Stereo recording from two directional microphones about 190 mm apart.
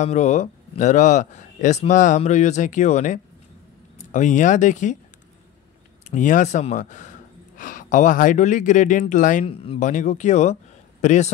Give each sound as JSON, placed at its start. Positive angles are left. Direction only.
{"t": 0.0, "sound": "speech", "side_deg": 40}
{"t": 6.0, "sound": "speech", "side_deg": 40}
{"t": 9.5, "sound": "a man's voice", "side_deg": 30}